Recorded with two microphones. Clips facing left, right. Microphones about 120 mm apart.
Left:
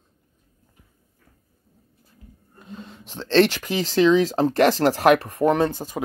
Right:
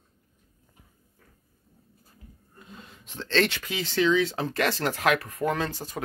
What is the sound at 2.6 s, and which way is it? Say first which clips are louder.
Speech: left 8 dB; 30° left (ahead or behind).